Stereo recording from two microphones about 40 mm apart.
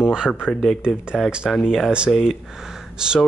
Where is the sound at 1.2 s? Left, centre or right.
Centre.